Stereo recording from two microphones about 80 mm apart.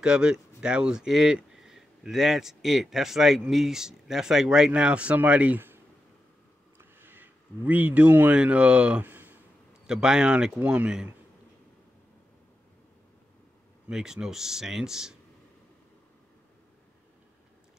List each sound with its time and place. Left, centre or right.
0.0 s speech: centre
6.8 s speech: right
9.8 s speech: centre
13.8 s speech: centre